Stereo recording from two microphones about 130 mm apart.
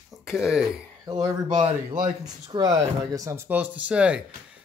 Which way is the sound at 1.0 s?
35° right (ahead or behind).